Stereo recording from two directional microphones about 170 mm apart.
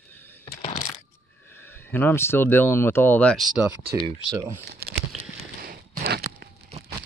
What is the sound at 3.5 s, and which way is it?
Speech, 5° right (ahead or behind).